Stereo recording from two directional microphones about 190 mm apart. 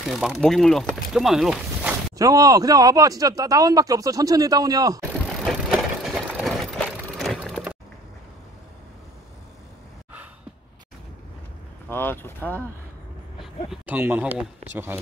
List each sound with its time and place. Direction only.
0.1 s speech: centre (ahead or behind)
2.1 s speech: 20° right (ahead or behind)
5.2 s vehicle: 5° left (ahead or behind)
11.9 s boat: 10° left (ahead or behind)
13.4 s a sound: 5° right (ahead or behind)
14.7 s speech: 10° right (ahead or behind)